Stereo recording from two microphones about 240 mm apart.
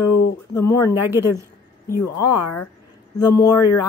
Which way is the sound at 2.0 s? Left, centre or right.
Left.